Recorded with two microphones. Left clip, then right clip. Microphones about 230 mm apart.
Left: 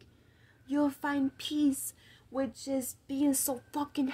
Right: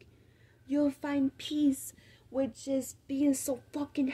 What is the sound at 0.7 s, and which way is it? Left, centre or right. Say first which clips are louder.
A woman's voice: even; left.